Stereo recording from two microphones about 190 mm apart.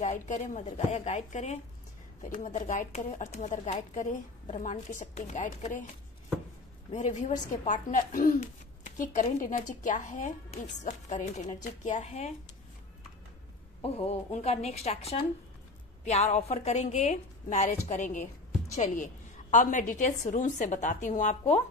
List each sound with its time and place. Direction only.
0.0 s speech: 40° left (ahead or behind)
6.9 s speech: 40° left (ahead or behind)
13.7 s speech: 30° left (ahead or behind)